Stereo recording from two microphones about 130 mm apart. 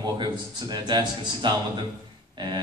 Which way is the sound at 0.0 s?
30° right (ahead or behind).